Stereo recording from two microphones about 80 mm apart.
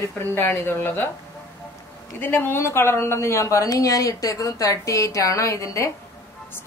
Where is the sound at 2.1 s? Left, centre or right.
Left.